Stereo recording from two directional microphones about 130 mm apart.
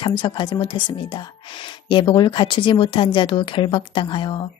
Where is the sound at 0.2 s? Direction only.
35° left (ahead or behind).